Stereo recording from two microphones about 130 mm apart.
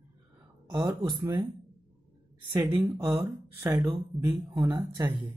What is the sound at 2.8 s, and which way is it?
Speech, 20° right (ahead or behind).